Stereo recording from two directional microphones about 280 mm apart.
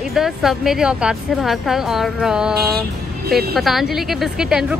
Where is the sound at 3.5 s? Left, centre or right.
Centre.